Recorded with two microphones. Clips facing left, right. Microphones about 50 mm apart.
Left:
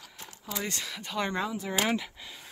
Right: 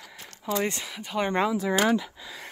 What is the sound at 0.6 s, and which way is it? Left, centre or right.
Speech, centre.